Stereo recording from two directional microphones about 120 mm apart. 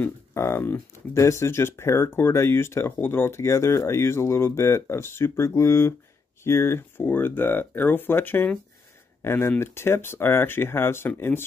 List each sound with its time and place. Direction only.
0.3 s speech: 20° left (ahead or behind)